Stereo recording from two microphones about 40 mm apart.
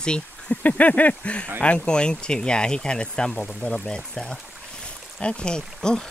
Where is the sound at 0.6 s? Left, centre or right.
Left.